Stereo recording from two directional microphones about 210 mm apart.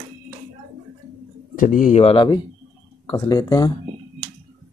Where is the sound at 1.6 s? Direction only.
40° left (ahead or behind); by 3.7 s 20° left (ahead or behind).